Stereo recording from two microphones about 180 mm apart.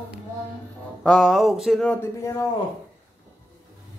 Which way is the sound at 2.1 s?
15° left (ahead or behind).